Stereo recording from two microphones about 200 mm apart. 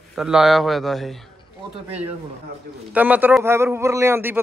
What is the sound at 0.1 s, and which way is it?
A man's voice, centre (ahead or behind).